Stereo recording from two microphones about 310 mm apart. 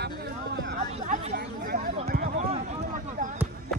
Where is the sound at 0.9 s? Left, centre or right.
Right.